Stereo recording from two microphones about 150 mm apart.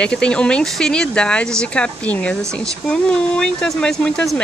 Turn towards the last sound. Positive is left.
turn(degrees=5)  # may be behind; listen again after turning